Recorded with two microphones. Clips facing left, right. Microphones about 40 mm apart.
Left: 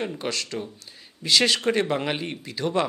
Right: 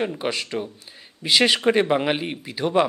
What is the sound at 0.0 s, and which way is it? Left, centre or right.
A man's voice, centre.